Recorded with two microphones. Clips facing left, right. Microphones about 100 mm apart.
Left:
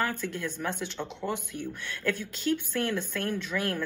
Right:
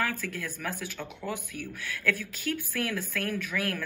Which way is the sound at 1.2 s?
25° left (ahead or behind).